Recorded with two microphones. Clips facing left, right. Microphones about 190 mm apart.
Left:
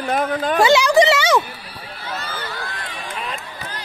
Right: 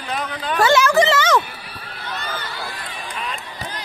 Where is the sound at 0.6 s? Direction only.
15° left (ahead or behind).